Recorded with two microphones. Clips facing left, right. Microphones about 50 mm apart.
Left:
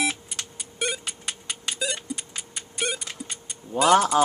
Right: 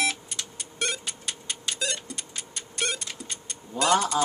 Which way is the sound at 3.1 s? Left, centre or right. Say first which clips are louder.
Left 1 dB; centre.